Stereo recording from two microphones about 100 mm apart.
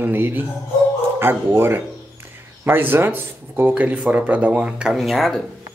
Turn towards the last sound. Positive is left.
turn(degrees=0)  # may be behind; listen again after turning